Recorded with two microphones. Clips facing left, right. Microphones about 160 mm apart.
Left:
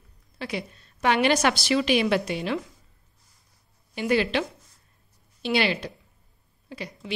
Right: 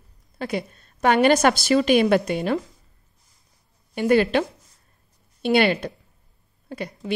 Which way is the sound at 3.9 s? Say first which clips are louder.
Right 5 dB; 50° right (ahead or behind).